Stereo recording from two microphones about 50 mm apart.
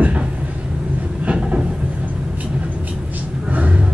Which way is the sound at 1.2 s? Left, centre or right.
Right.